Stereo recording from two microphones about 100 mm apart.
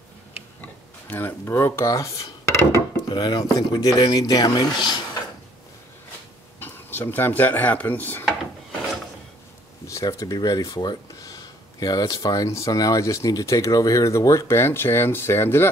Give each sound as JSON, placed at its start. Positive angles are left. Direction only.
{"t": 0.6, "sound": "a sound", "side_deg": 15}
{"t": 3.1, "sound": "speech", "side_deg": 45}
{"t": 6.6, "sound": "speech", "side_deg": 20}
{"t": 9.8, "sound": "speech", "side_deg": 35}